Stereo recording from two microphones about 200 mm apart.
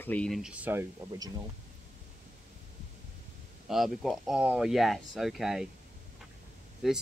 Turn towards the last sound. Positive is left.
turn(degrees=0)  # may be behind; listen again after turning